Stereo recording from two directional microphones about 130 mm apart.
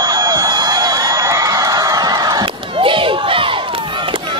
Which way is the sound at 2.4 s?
40° right (ahead or behind).